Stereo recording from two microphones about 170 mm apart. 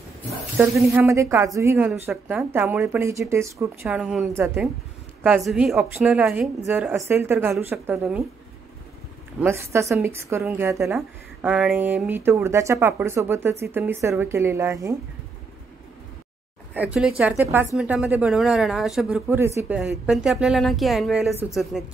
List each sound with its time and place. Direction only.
0.8 s speech: 15° right (ahead or behind)
3.9 s speech: 5° right (ahead or behind)
9.4 s speech: 15° right (ahead or behind)
11.0 s speech: 5° right (ahead or behind)
16.7 s speech: 10° right (ahead or behind)